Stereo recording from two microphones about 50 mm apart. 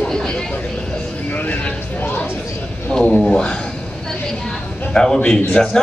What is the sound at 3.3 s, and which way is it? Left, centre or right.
Speech, centre.